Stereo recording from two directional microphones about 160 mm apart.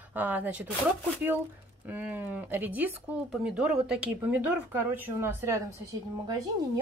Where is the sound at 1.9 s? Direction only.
10° right (ahead or behind).